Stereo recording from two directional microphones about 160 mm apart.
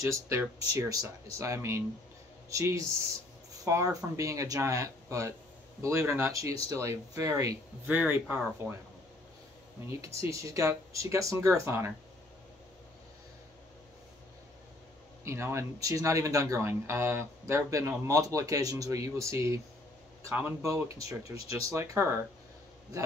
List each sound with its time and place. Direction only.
0.0 s speech: 20° right (ahead or behind)
7.9 s speech: 10° right (ahead or behind)
10.2 s speech: 20° right (ahead or behind)
15.2 s speech: 15° right (ahead or behind)